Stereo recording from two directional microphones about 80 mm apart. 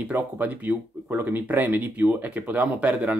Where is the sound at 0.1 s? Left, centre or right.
Right.